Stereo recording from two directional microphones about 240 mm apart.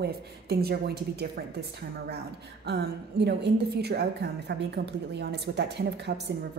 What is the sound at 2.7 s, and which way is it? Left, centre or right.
A woman's voice, right.